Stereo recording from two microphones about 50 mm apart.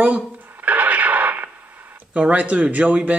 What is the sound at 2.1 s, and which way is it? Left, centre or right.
Speech, right.